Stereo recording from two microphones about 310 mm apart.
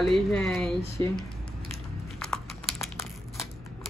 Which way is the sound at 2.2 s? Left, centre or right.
Centre.